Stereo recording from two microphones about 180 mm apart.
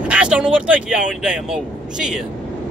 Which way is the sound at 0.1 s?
5° right (ahead or behind).